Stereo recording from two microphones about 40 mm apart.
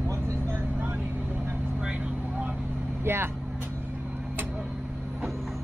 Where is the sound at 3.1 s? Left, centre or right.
Right.